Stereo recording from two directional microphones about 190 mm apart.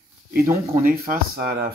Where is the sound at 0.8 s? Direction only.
50° right (ahead or behind).